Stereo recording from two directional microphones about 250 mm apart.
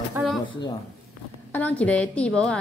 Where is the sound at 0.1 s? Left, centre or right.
Centre.